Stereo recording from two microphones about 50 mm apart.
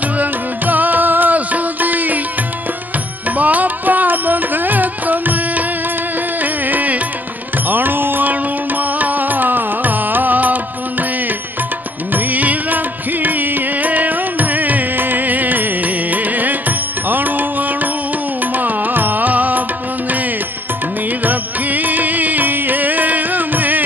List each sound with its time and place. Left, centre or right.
0.2 s music: right
3.3 s music: right
6.4 s music: right
12.1 s music: right
21.2 s music: right